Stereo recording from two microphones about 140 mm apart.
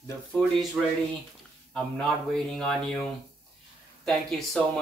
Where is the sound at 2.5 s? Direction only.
5° left (ahead or behind).